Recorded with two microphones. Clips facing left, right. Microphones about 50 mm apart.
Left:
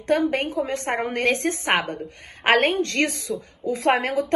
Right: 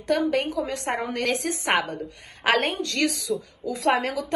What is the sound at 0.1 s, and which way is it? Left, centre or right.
A woman's voice, left.